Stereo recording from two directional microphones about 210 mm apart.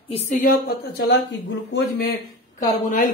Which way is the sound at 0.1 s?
40° left (ahead or behind).